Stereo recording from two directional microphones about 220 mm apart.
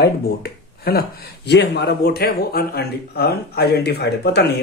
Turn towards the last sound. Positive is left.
turn(degrees=50)  # may be behind; listen again after turning